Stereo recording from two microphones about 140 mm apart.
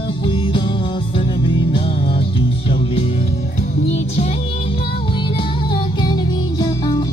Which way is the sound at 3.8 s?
45° left (ahead or behind).